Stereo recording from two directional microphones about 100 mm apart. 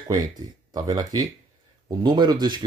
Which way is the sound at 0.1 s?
45° right (ahead or behind).